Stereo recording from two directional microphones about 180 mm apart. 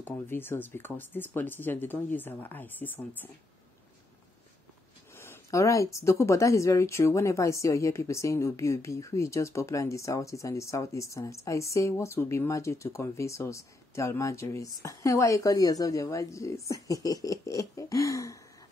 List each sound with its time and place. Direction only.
0.0 s speech: 10° left (ahead or behind)
5.1 s speech: 15° left (ahead or behind)